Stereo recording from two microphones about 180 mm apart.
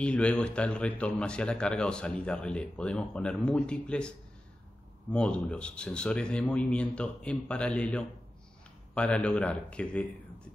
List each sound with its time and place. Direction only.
0.0 s a man's voice: 5° left (ahead or behind)
5.1 s a man's voice: 10° left (ahead or behind)